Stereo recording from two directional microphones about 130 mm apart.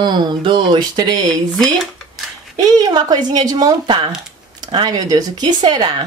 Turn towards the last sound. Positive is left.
turn(degrees=-35)  # may be behind; listen again after turning